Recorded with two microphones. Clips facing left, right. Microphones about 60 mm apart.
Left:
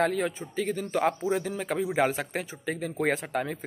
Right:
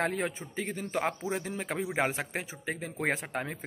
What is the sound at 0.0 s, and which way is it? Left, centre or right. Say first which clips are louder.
A man's voice: left 5 dB; right.